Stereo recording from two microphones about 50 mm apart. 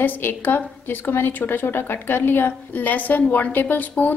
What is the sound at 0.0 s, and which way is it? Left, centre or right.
A woman's voice, left.